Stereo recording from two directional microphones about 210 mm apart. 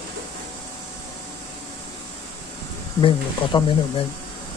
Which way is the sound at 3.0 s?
25° left (ahead or behind).